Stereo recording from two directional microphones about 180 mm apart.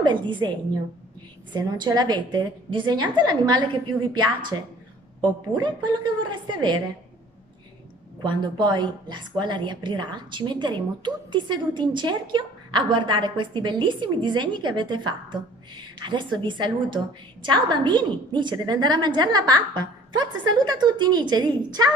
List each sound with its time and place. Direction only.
0.0 s a woman's voice: 25° right (ahead or behind)
1.5 s a woman's voice: 25° right (ahead or behind)
8.2 s a woman's voice: 25° right (ahead or behind)